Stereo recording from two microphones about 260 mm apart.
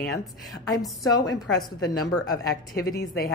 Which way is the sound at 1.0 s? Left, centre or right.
Centre.